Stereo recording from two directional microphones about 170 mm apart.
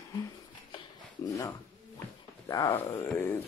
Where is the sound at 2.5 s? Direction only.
25° left (ahead or behind).